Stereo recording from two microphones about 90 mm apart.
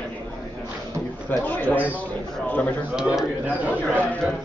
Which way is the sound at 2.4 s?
20° left (ahead or behind).